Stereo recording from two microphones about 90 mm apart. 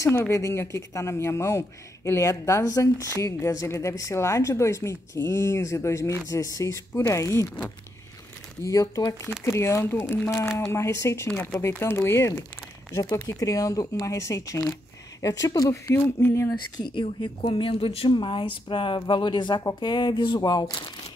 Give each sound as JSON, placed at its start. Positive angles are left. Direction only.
{"t": 0.0, "sound": "a woman's voice", "side_deg": 30}
{"t": 8.6, "sound": "a woman's voice", "side_deg": 40}
{"t": 10.4, "sound": "speech", "side_deg": 5}
{"t": 10.7, "sound": "a woman's voice", "side_deg": 30}
{"t": 16.7, "sound": "speech", "side_deg": 60}
{"t": 20.3, "sound": "speech", "side_deg": 50}